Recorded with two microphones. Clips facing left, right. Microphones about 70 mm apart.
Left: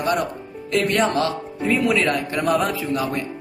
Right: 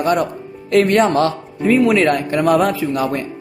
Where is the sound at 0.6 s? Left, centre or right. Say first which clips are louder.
Right 7 dB; right.